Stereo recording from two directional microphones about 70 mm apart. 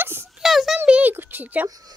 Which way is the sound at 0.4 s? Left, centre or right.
Centre.